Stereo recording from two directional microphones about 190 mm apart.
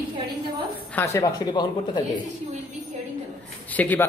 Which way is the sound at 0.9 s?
15° left (ahead or behind).